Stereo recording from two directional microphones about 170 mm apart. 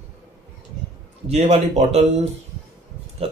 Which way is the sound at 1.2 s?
40° right (ahead or behind).